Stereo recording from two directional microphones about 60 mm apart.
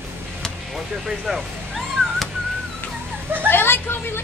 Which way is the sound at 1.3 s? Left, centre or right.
Centre.